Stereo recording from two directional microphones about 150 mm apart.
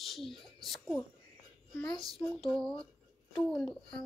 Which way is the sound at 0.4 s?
Centre (ahead or behind).